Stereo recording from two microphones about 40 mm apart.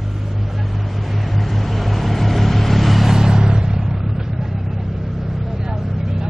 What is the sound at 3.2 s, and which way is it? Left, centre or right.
Vehicle, centre.